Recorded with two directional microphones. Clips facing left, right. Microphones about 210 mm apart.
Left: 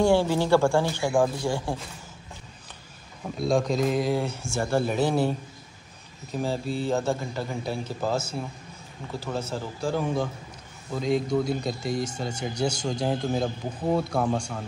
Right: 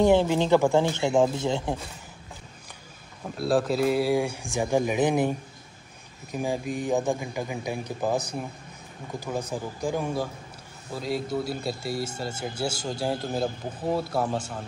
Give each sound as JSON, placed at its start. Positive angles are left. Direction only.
{"t": 0.0, "sound": "speech", "side_deg": -20}
{"t": 3.3, "sound": "a man's voice", "side_deg": -5}